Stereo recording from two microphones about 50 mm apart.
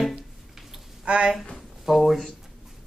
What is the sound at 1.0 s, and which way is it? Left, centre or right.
Speech, right.